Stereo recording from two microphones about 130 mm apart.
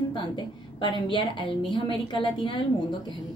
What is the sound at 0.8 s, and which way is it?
A woman's voice, 35° left (ahead or behind).